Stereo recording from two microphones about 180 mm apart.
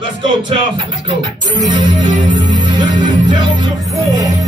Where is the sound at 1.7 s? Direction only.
25° right (ahead or behind).